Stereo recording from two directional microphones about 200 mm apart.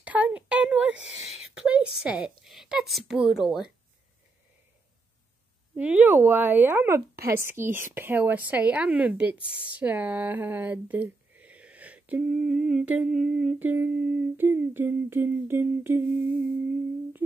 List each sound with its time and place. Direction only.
0.0 s a sound: 5° right (ahead or behind)
2.0 s speech: centre (ahead or behind)
5.8 s speech: 5° right (ahead or behind)